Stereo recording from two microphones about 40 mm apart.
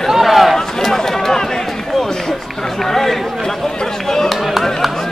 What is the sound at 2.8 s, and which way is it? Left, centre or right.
Run, centre.